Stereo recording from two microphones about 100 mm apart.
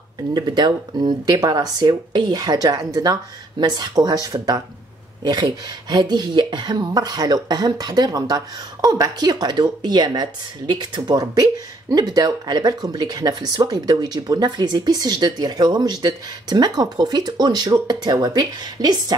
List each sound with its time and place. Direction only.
0.3 s speech: 45° right (ahead or behind)